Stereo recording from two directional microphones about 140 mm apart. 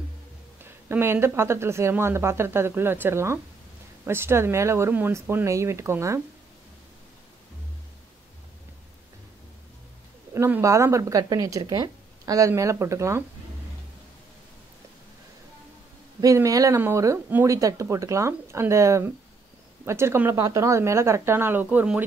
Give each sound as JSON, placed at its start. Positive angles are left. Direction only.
{"t": 0.7, "sound": "a woman's voice", "side_deg": -15}
{"t": 10.3, "sound": "speech", "side_deg": -20}
{"t": 16.2, "sound": "speech", "side_deg": -25}